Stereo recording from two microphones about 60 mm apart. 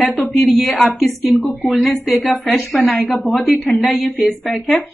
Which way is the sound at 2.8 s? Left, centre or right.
Left.